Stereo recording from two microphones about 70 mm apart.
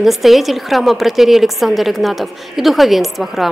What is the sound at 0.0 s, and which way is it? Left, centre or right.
A woman's voice, centre.